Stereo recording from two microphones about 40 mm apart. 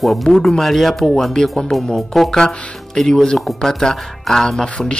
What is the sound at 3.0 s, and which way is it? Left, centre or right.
Speech, centre.